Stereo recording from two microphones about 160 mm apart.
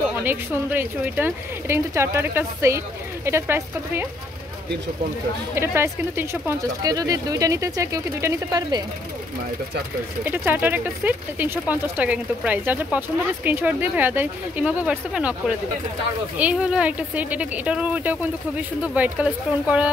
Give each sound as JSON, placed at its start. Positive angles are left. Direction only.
{"t": 0.2, "sound": "speech", "side_deg": -10}
{"t": 5.5, "sound": "speech", "side_deg": -15}
{"t": 10.2, "sound": "speech", "side_deg": -10}